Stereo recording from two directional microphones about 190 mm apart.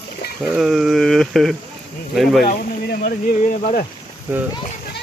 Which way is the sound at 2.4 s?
55° left (ahead or behind).